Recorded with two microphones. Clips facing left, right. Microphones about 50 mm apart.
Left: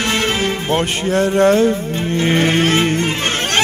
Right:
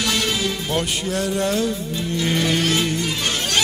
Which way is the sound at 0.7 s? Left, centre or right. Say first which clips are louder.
Left 6 dB; left.